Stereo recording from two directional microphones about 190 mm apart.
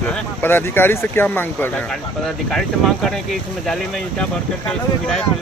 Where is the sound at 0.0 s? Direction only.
10° left (ahead or behind).